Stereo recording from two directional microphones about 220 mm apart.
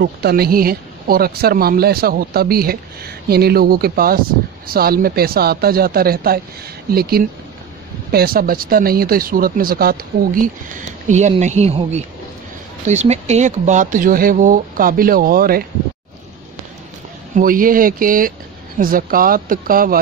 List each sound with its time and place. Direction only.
0.0 s speech: 45° right (ahead or behind)
17.4 s speech: 40° right (ahead or behind)